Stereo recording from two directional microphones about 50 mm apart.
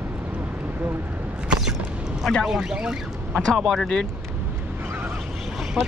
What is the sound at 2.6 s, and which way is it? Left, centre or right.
Speech, centre.